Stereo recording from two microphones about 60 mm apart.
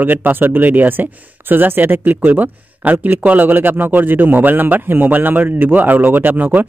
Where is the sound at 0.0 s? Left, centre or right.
Right.